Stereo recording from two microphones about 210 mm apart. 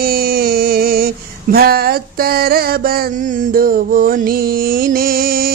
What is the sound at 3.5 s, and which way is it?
Music, 45° right (ahead or behind).